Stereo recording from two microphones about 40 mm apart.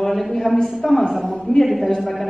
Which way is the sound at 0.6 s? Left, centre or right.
Centre.